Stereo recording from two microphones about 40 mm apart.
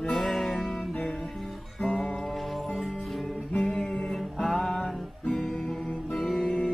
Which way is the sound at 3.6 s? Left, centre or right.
Centre.